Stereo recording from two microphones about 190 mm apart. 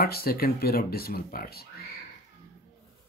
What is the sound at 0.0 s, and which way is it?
Speech, 50° left (ahead or behind).